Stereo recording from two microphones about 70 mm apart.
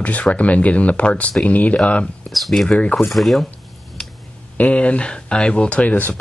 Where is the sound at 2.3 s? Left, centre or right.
Centre.